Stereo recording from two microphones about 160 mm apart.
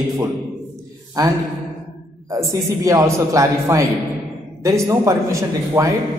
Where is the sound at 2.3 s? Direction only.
20° right (ahead or behind).